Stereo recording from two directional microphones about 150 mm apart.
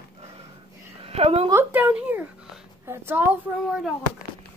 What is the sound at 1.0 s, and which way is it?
Speech, 40° right (ahead or behind).